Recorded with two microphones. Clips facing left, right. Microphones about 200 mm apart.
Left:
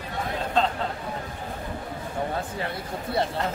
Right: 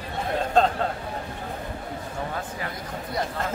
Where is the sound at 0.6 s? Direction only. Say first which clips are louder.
Right 4 dB; 45° right (ahead or behind).